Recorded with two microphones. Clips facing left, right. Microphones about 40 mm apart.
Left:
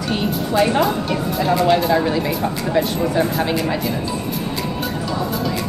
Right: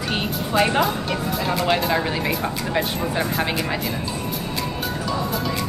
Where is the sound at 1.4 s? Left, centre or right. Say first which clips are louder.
Left 6 dB; centre.